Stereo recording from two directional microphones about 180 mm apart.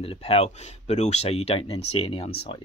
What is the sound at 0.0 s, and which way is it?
Speech, 30° left (ahead or behind).